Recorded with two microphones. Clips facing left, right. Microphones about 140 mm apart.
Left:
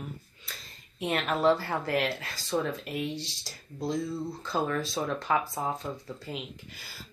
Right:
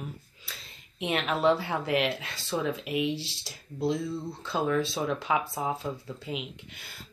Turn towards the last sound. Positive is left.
turn(degrees=0)  # may be behind; listen again after turning